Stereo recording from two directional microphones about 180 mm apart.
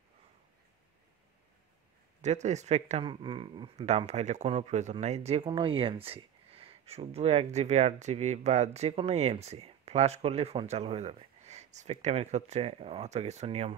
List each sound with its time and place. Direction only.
2.2 s speech: 40° right (ahead or behind)
3.8 s speech: 40° right (ahead or behind)